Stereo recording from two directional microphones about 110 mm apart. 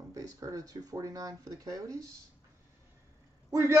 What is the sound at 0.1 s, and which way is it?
A man's voice, 30° right (ahead or behind).